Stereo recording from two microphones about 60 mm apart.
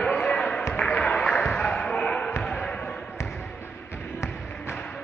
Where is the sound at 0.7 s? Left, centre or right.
Centre.